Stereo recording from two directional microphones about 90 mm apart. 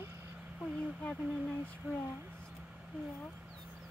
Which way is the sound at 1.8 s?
15° right (ahead or behind).